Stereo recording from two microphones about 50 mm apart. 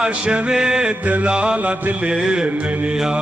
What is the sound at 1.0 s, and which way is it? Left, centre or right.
Mantra, right.